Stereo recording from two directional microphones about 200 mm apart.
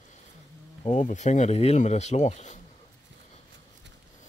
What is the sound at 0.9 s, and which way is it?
Speech, 35° left (ahead or behind).